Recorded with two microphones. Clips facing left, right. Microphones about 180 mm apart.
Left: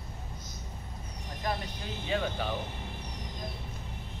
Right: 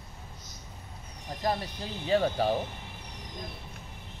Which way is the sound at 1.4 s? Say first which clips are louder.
Right 4 dB; 35° right (ahead or behind).